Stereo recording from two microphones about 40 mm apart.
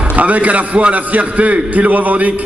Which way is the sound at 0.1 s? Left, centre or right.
Right.